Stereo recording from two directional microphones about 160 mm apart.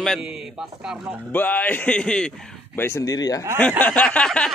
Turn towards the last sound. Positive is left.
turn(degrees=5)  # may be behind; listen again after turning